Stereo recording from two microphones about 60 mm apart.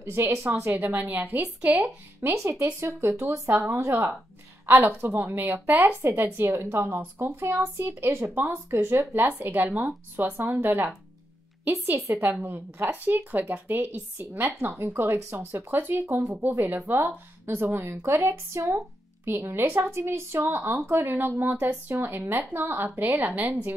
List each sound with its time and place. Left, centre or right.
0.0 s speech: right
0.7 s speech: right
2.2 s speech: right
2.6 s speech: right
5.0 s speech: right
6.3 s speech: right